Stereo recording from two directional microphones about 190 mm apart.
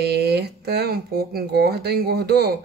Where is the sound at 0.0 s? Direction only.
60° right (ahead or behind).